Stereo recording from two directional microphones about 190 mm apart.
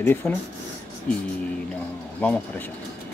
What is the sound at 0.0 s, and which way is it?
Speech, 10° left (ahead or behind).